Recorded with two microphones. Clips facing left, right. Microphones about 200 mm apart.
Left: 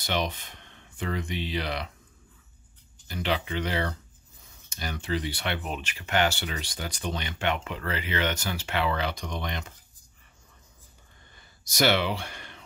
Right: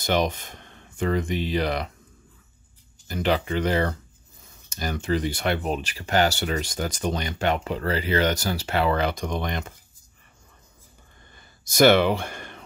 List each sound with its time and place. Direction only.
0.0 s speech: 45° right (ahead or behind)
3.1 s speech: 45° right (ahead or behind)
11.3 s gasp: 50° right (ahead or behind)